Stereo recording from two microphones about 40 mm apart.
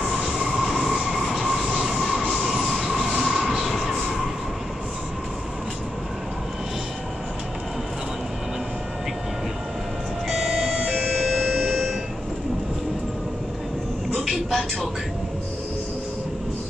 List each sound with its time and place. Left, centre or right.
0.0 s train: centre
10.2 s vehicle: centre
10.8 s doorbell: right
11.1 s music: centre
14.3 s music: centre